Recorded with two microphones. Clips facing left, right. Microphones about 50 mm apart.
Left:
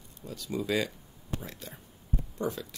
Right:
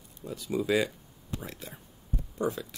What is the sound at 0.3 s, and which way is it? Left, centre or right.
Speech, centre.